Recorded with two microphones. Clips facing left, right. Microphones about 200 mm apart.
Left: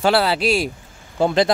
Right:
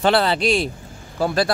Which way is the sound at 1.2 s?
20° left (ahead or behind).